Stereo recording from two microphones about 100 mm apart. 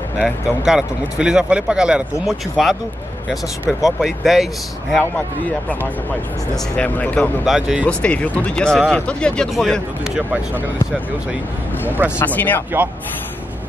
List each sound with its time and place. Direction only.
0.2 s speech: 5° right (ahead or behind)
6.5 s speech: 10° left (ahead or behind)
7.4 s speech: 5° right (ahead or behind)
7.8 s speech: 15° left (ahead or behind)
12.2 s speech: 20° left (ahead or behind)